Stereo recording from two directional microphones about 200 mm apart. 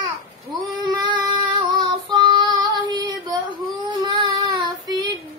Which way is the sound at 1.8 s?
20° right (ahead or behind).